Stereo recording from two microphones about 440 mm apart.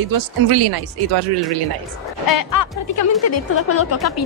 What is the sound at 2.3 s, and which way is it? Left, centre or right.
Speech, left.